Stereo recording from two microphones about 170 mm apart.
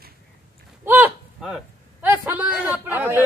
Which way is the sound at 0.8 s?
10° right (ahead or behind).